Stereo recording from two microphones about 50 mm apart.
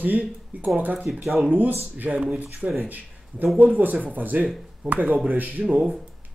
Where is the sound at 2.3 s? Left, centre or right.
Right.